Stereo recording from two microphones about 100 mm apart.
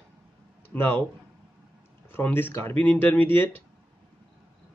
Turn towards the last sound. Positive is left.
turn(degrees=20)  # may be behind; listen again after turning